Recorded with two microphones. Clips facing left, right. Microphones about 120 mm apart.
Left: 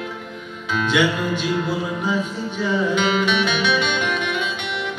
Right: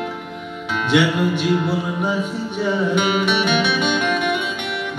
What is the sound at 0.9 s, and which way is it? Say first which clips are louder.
Music: right 3 dB; 60° right (ahead or behind).